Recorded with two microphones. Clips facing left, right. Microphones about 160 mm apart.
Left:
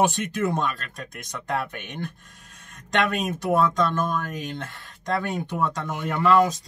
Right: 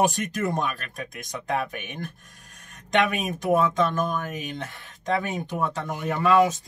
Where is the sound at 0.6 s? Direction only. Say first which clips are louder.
Left 1 dB; 15° right (ahead or behind).